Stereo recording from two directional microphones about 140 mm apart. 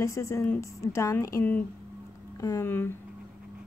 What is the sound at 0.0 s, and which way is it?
A woman's voice, 20° left (ahead or behind).